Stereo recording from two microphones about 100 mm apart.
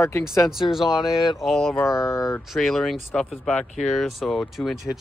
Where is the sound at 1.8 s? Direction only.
25° left (ahead or behind).